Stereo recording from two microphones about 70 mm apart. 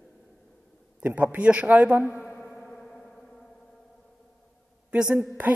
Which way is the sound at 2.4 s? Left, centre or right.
Centre.